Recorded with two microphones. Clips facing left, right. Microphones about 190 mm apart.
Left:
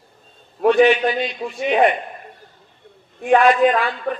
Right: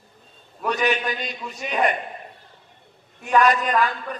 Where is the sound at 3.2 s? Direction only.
40° right (ahead or behind).